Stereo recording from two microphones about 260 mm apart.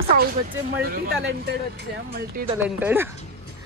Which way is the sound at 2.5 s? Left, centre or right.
Centre.